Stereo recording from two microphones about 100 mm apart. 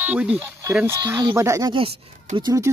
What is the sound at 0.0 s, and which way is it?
Speech, 15° right (ahead or behind).